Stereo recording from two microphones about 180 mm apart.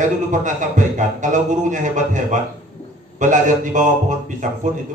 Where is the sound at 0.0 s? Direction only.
45° right (ahead or behind).